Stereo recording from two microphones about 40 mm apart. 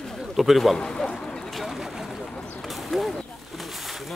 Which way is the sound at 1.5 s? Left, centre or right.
Centre.